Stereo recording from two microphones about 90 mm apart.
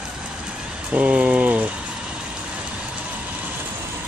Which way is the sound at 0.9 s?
15° right (ahead or behind).